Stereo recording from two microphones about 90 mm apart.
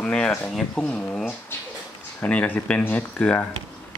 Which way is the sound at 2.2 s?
15° left (ahead or behind).